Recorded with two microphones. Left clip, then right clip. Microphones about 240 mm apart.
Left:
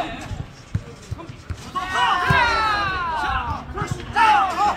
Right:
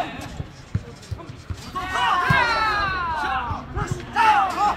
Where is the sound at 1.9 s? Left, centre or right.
Centre.